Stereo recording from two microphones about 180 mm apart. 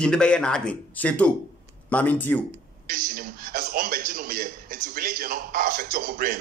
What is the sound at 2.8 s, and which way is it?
A man's voice, 55° right (ahead or behind).